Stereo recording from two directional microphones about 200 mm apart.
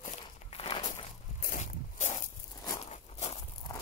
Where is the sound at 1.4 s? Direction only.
40° left (ahead or behind).